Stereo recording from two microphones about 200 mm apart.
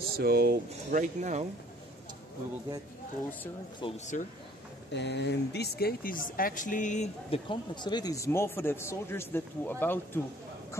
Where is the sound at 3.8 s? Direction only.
35° left (ahead or behind).